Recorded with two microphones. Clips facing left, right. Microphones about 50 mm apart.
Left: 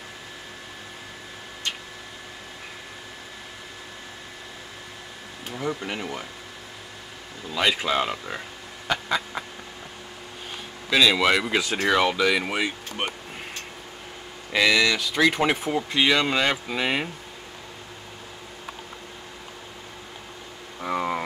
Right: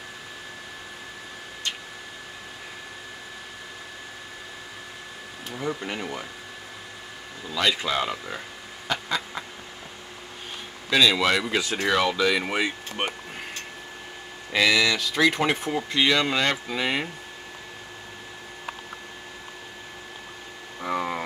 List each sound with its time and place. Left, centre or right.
5.5 s speech: centre
7.5 s speech: centre
8.8 s a sound: centre
10.9 s speech: centre
14.5 s speech: centre
20.8 s vehicle: centre